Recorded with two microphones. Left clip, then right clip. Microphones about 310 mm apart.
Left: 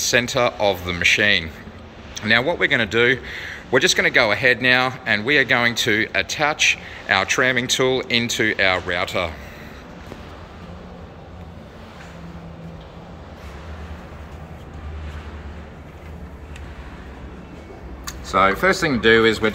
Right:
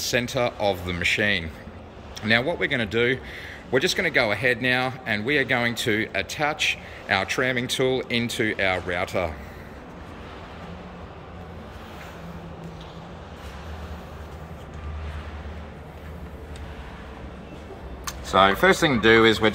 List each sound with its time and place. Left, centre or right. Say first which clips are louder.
0.0 s a man's voice: left 6 dB; centre
18.3 s speech: left 1 dB; right